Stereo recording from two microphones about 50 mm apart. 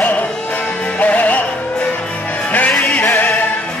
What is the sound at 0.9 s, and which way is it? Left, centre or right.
Music, left.